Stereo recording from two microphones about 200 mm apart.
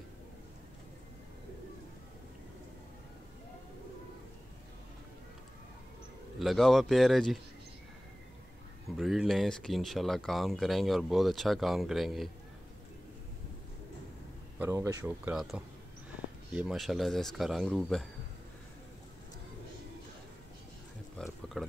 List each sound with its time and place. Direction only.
6.4 s speech: centre (ahead or behind)
8.9 s speech: centre (ahead or behind)
14.6 s speech: 15° right (ahead or behind)
21.2 s a sound: 5° left (ahead or behind)
21.5 s speech: centre (ahead or behind)